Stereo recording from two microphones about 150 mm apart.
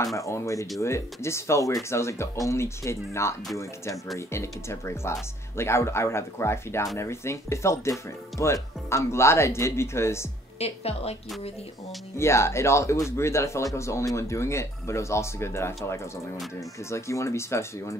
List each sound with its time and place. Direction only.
0.0 s speech: 20° left (ahead or behind)
10.6 s a woman's voice: 45° left (ahead or behind)
12.2 s speech: 20° left (ahead or behind)